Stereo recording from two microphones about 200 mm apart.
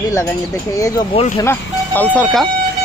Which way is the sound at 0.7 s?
15° left (ahead or behind).